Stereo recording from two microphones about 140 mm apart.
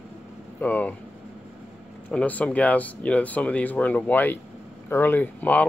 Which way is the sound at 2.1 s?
10° left (ahead or behind).